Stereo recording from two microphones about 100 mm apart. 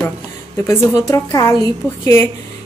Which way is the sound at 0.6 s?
30° left (ahead or behind).